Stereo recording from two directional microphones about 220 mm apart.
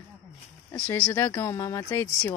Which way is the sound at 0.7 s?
5° left (ahead or behind).